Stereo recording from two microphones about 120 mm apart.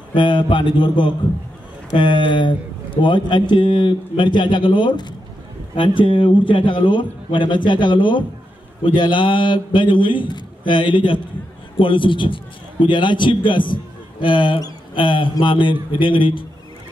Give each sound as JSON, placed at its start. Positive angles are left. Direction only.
{"t": 0.1, "sound": "a man's voice", "side_deg": 45}